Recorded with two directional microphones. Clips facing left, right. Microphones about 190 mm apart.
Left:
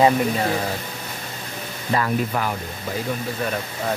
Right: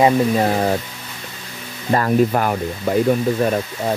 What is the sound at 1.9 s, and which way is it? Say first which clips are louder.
Speech: right 6 dB; 45° right (ahead or behind).